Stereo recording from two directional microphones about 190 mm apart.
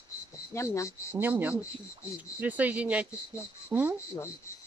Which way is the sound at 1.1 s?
10° right (ahead or behind).